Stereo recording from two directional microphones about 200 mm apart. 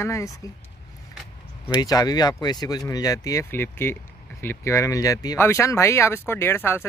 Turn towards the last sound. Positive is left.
turn(degrees=10)  # may be behind; listen again after turning